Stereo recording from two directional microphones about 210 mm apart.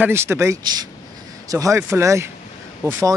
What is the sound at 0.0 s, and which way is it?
Speech, 10° right (ahead or behind).